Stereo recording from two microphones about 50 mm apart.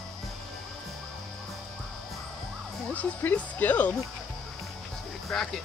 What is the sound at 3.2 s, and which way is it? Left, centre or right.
Speech, left.